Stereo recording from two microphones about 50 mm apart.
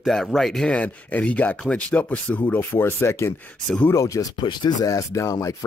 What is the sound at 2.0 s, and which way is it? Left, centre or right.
Speech, left.